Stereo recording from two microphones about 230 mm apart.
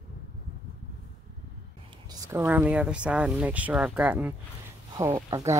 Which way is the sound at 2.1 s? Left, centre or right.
Centre.